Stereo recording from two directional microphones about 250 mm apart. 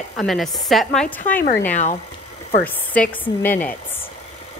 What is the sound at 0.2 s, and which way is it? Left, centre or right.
A woman's voice, centre.